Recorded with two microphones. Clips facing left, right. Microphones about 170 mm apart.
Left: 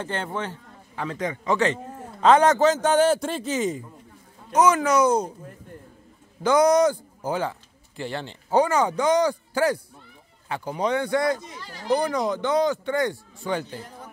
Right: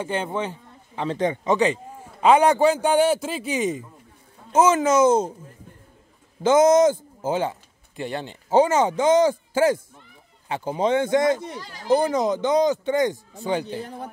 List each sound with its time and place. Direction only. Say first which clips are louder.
0.0 s a man's voice: right 3 dB; 15° right (ahead or behind)
1.0 s a man's voice: right 4 dB; 30° right (ahead or behind); by 3.4 s 5° right (ahead or behind)
3.4 s a man's voice: right 3 dB; 15° right (ahead or behind)
6.4 s speech: right 3 dB; 20° right (ahead or behind)